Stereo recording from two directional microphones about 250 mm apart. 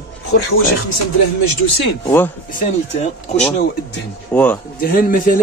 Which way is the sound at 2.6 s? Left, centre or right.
Left.